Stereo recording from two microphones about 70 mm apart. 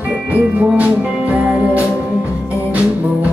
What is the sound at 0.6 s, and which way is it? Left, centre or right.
Music, right.